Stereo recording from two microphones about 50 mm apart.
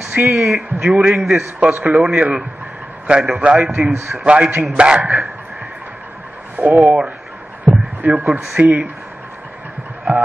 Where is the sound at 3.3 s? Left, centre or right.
Right.